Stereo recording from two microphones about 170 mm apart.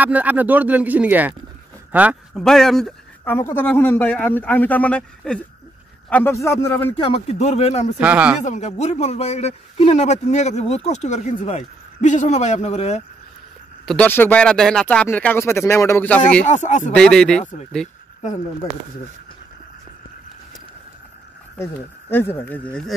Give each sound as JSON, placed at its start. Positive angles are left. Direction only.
{"t": 0.0, "sound": "a man's voice", "side_deg": -10}
{"t": 2.3, "sound": "speech", "side_deg": 5}
{"t": 3.3, "sound": "speech", "side_deg": 15}
{"t": 7.0, "sound": "a man's voice", "side_deg": 35}
{"t": 8.0, "sound": "speech", "side_deg": -10}
{"t": 8.4, "sound": "a man's voice", "side_deg": 45}
{"t": 13.8, "sound": "speech", "side_deg": 10}
{"t": 16.4, "sound": "speech", "side_deg": 45}
{"t": 16.9, "sound": "speech", "side_deg": 5}
{"t": 17.4, "sound": "speech", "side_deg": 45}
{"t": 22.1, "sound": "speech", "side_deg": 10}